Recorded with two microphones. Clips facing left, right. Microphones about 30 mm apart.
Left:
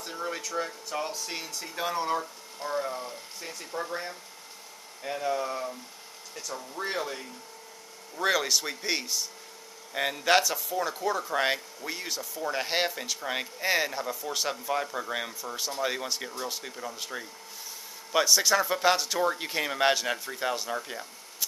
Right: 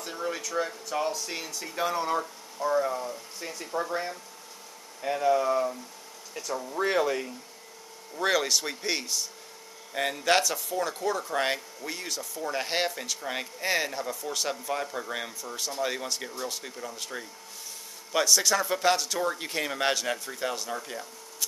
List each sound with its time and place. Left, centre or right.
0.0 s a sound: centre
0.5 s speech: centre
6.7 s speech: right
8.2 s speech: centre